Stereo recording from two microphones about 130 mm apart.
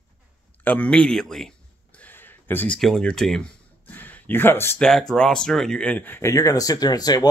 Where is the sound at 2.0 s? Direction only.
15° left (ahead or behind).